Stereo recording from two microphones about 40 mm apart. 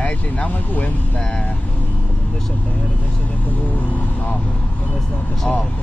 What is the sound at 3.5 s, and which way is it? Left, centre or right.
Speech, left.